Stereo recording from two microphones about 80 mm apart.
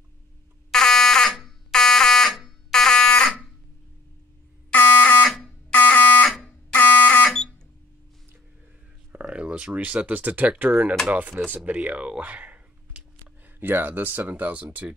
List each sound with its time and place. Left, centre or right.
0.7 s fire alarm: centre
4.7 s fire alarm: left
9.2 s speech: centre